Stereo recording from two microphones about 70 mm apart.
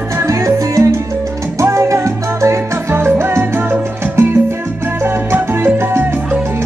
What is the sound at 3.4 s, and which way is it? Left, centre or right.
Salsa music, right.